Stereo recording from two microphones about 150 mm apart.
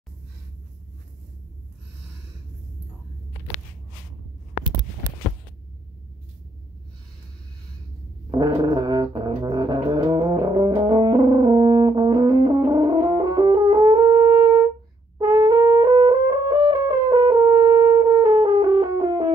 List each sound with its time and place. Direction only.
8.3 s brass instrument: 30° right (ahead or behind)
18.5 s music: 30° right (ahead or behind)